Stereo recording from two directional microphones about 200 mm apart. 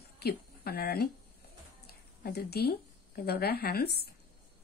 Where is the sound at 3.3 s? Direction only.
50° left (ahead or behind).